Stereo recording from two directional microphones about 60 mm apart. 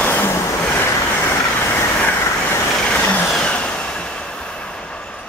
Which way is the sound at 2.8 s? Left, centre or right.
Centre.